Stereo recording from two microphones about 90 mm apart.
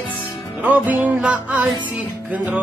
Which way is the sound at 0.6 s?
20° right (ahead or behind).